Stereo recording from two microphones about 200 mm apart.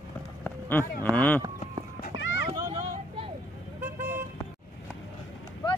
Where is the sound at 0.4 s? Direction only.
10° left (ahead or behind).